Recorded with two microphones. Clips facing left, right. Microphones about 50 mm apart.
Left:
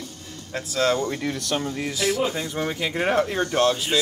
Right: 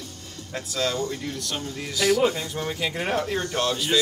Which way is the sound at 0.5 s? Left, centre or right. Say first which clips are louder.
Left 4 dB; centre.